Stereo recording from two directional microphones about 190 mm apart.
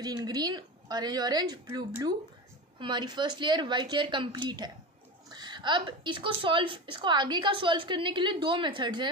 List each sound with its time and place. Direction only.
0.0 s a woman's voice: 20° right (ahead or behind)